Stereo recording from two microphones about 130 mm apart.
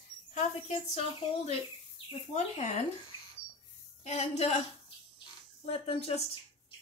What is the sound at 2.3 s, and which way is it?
Speech, 60° left (ahead or behind).